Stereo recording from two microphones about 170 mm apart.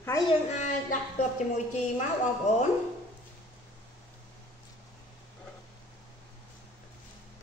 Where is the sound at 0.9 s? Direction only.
40° left (ahead or behind).